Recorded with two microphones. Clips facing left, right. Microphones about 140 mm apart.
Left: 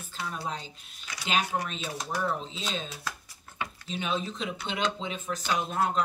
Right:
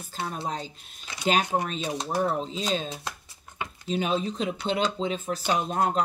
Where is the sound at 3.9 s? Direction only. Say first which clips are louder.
Right 6 dB; 40° right (ahead or behind).